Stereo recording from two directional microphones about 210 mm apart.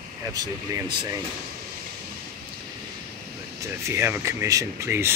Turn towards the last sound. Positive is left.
turn(degrees=-10)  # may be behind; listen again after turning